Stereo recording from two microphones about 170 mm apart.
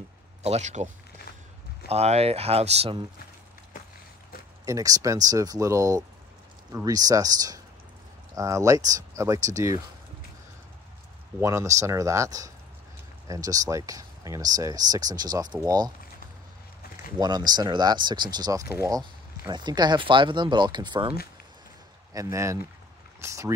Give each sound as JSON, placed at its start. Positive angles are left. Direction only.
{"t": 0.4, "sound": "speech", "side_deg": -40}
{"t": 1.9, "sound": "speech", "side_deg": -40}
{"t": 4.6, "sound": "speech", "side_deg": -20}
{"t": 11.4, "sound": "speech", "side_deg": -20}
{"t": 17.2, "sound": "speech", "side_deg": -25}
{"t": 22.1, "sound": "speech", "side_deg": -20}